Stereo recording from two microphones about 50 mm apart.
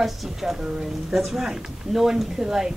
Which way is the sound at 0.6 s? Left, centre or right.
Centre.